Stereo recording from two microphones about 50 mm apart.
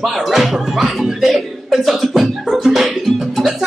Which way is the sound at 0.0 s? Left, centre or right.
Centre.